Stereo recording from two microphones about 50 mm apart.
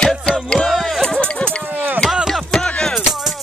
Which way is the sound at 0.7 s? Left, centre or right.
Centre.